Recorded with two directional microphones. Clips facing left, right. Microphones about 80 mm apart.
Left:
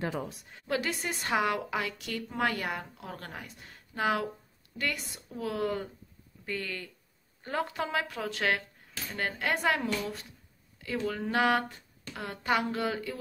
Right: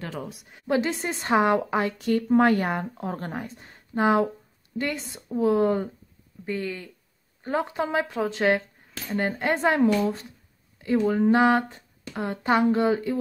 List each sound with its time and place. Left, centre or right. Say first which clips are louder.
0.2 s a woman's voice: right 2 dB; centre
0.5 s speech: right 8 dB; centre